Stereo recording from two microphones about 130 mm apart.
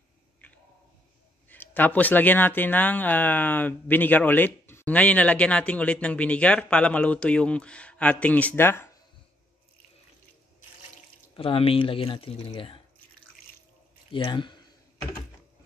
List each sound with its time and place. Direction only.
1.5 s speech: 15° left (ahead or behind)
11.3 s speech: 45° left (ahead or behind)
14.1 s speech: 40° left (ahead or behind)